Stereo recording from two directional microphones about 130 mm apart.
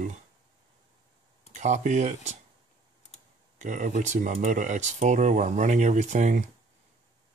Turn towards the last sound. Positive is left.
turn(degrees=-70)  # may be behind; listen again after turning